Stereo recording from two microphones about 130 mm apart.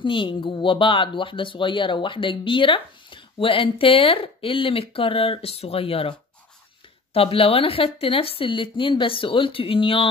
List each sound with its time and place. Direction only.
0.0 s speech: 40° left (ahead or behind)
7.2 s speech: 45° left (ahead or behind)